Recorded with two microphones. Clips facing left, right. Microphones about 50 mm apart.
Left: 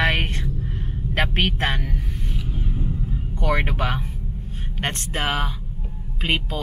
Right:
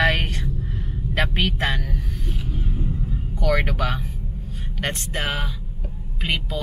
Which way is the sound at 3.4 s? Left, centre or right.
Left.